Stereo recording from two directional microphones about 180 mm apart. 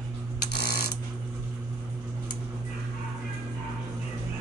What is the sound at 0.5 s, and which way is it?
Mechanisms, 60° left (ahead or behind).